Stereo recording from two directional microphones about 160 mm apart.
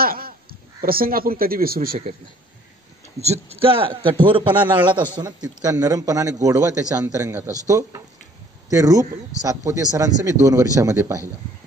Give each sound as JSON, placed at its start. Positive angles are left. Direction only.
{"t": 0.0, "sound": "speech", "side_deg": -70}
{"t": 3.2, "sound": "a man's voice", "side_deg": -40}